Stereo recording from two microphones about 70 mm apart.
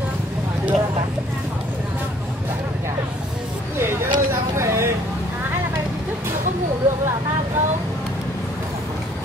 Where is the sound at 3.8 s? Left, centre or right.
Right.